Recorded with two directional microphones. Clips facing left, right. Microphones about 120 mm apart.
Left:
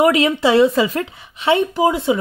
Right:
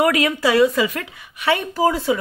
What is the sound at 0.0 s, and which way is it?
Speech, 25° left (ahead or behind).